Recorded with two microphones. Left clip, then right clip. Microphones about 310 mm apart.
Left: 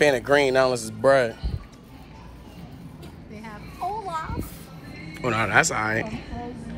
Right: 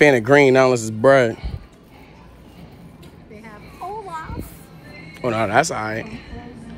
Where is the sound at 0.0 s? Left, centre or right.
Right.